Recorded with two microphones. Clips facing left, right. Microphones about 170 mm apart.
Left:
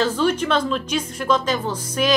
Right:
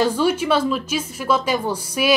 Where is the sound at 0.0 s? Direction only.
10° right (ahead or behind).